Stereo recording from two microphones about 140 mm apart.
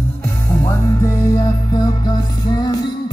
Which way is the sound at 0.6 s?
20° left (ahead or behind).